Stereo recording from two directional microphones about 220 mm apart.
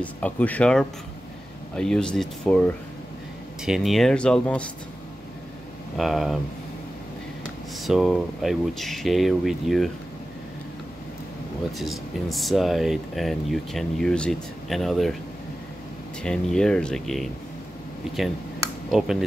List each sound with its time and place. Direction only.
0.0 s speech: 5° left (ahead or behind)
5.9 s speech: centre (ahead or behind)
7.8 s speech: centre (ahead or behind)
11.8 s speech: centre (ahead or behind)
16.2 s speech: 5° left (ahead or behind)
18.9 s speech: centre (ahead or behind)